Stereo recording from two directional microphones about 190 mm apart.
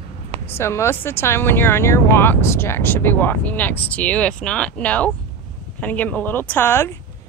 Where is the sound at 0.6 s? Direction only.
15° left (ahead or behind).